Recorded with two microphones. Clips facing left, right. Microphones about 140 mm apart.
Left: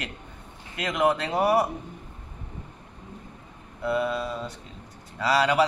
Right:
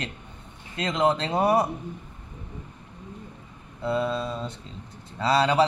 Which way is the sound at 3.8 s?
25° right (ahead or behind).